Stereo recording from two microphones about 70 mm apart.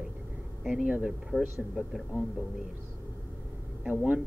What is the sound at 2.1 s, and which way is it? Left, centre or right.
Speech, right.